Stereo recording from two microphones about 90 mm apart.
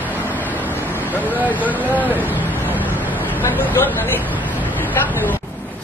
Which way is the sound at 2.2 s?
20° right (ahead or behind).